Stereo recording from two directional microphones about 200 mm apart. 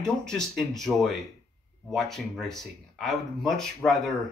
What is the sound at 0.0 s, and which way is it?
Speech, 5° left (ahead or behind).